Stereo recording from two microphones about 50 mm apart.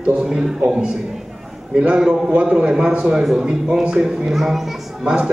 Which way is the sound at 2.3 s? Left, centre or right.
Right.